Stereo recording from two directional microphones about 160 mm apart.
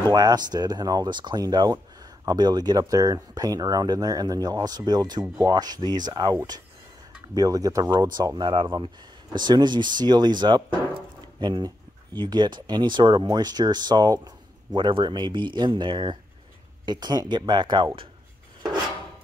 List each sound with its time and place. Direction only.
0.0 s speech: 25° right (ahead or behind)
7.3 s speech: 20° right (ahead or behind)